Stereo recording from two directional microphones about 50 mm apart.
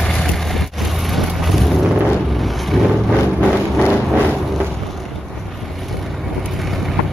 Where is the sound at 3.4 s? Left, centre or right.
Left.